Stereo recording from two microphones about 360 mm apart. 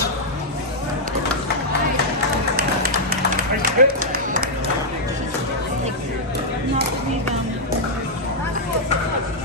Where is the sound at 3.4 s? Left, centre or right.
Right.